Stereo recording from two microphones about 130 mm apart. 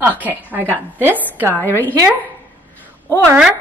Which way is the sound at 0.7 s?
15° right (ahead or behind).